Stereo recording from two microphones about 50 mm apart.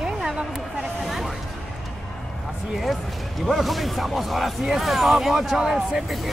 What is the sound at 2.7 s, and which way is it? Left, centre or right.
Speech, centre.